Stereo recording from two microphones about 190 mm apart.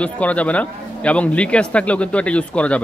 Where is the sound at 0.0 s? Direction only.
5° left (ahead or behind).